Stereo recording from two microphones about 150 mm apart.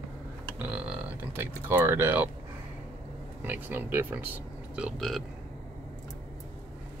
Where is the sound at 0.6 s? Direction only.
5° right (ahead or behind).